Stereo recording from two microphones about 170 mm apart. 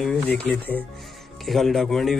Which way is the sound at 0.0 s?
5° left (ahead or behind).